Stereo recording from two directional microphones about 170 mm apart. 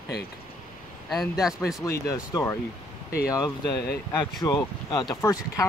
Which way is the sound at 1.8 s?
20° left (ahead or behind).